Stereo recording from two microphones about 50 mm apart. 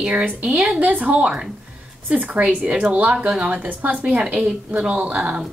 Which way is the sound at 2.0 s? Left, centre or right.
Right.